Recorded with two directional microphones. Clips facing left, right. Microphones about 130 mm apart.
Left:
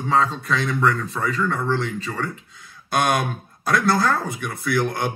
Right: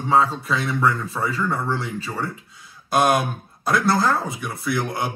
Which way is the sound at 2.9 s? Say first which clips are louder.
Right 2 dB; 5° right (ahead or behind).